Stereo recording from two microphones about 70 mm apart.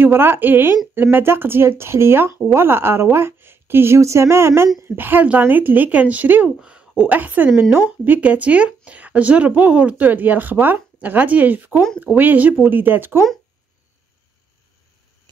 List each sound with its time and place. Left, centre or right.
0.0 s a woman's voice: right
4.8 s speech: right
6.6 s a sound: centre
7.0 s speech: right